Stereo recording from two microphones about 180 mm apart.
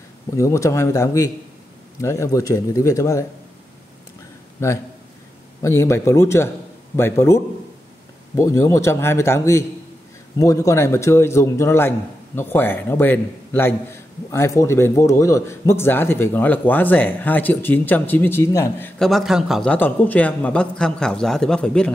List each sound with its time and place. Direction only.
0.4 s a man's voice: 15° left (ahead or behind)
4.6 s a man's voice: 15° left (ahead or behind)
19.0 s a man's voice: centre (ahead or behind)